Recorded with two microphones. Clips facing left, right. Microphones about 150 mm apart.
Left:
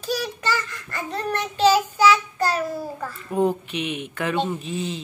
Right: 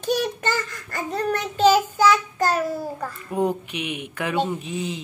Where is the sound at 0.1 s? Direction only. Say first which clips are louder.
Right 2 dB; 50° right (ahead or behind).